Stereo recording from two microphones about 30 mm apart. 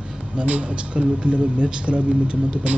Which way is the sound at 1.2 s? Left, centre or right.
Right.